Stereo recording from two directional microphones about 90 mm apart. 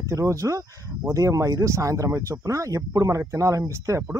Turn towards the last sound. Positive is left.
turn(degrees=-40)  # may be behind; listen again after turning